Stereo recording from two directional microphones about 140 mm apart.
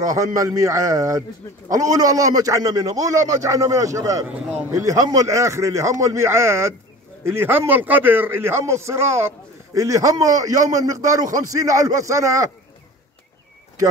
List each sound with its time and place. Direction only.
0.0 s a man's voice: 25° right (ahead or behind)